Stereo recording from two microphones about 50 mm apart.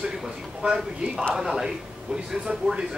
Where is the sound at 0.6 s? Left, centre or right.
Right.